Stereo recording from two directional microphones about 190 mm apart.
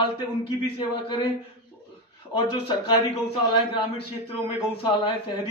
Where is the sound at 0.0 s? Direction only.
25° left (ahead or behind).